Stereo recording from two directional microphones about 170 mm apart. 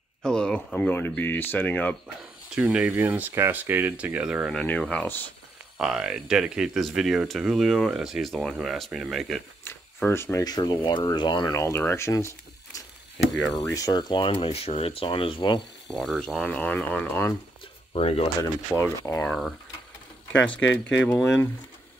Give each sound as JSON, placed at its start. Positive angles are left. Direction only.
{"t": 0.2, "sound": "speech", "side_deg": 5}
{"t": 2.5, "sound": "speech", "side_deg": -5}
{"t": 5.8, "sound": "speech", "side_deg": -5}
{"t": 9.9, "sound": "speech", "side_deg": 15}
{"t": 13.4, "sound": "speech", "side_deg": 5}
{"t": 13.7, "sound": "speech", "side_deg": 20}
{"t": 15.9, "sound": "speech", "side_deg": 5}
{"t": 17.9, "sound": "speech", "side_deg": 35}
{"t": 18.7, "sound": "speech", "side_deg": 10}